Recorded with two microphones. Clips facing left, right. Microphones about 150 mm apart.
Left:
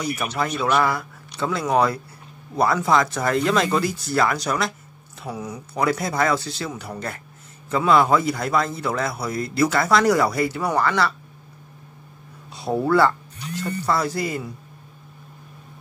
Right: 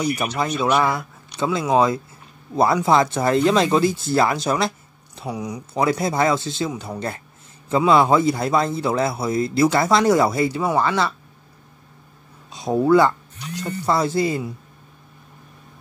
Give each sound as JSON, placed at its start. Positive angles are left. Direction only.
{"t": 0.0, "sound": "a man's voice", "side_deg": -20}
{"t": 5.2, "sound": "speech", "side_deg": -15}
{"t": 5.9, "sound": "a man's voice", "side_deg": -25}
{"t": 7.7, "sound": "a man's voice", "side_deg": -25}
{"t": 12.5, "sound": "a man's voice", "side_deg": -15}